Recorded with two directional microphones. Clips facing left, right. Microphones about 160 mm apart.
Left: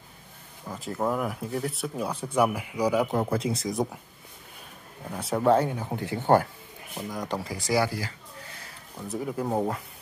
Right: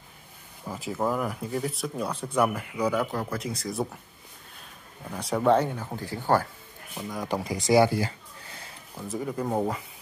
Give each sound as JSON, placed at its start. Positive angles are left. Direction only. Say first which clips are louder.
{"t": 0.7, "sound": "speech", "louder": "even", "side_deg": -5}
{"t": 3.1, "sound": "speech", "louder": "left 5 dB", "side_deg": 25}
{"t": 5.1, "sound": "speech", "louder": "even", "side_deg": 5}
{"t": 5.9, "sound": "speech", "louder": "left 3 dB", "side_deg": 20}
{"t": 7.1, "sound": "speech", "louder": "right 1 dB", "side_deg": -5}
{"t": 7.3, "sound": "speech", "louder": "right 6 dB", "side_deg": -20}
{"t": 8.9, "sound": "speech", "louder": "even", "side_deg": 0}